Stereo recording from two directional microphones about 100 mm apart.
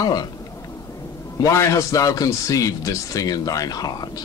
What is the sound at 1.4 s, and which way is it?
Speech, 30° left (ahead or behind).